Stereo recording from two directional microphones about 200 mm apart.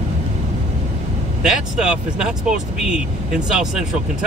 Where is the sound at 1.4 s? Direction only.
5° right (ahead or behind).